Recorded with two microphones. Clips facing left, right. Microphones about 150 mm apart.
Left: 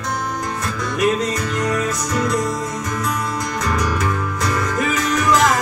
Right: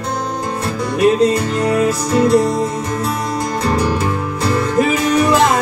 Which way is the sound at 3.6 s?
30° right (ahead or behind).